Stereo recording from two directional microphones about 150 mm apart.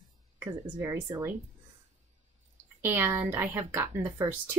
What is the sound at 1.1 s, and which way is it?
Speech, 25° right (ahead or behind).